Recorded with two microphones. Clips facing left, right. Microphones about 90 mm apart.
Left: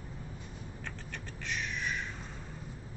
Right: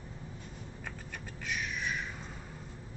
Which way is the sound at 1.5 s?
5° right (ahead or behind).